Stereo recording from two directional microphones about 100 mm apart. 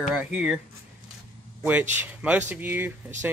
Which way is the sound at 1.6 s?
20° right (ahead or behind).